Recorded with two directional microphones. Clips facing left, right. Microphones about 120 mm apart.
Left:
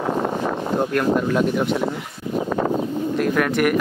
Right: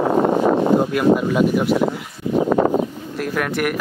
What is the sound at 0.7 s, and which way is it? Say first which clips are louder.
Speech: right 3 dB; 5° right (ahead or behind).